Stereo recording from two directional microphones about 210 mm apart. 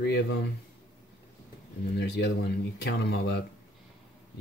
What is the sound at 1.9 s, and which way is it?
Speech, 55° left (ahead or behind).